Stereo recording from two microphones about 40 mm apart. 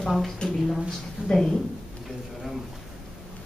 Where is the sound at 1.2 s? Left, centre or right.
Right.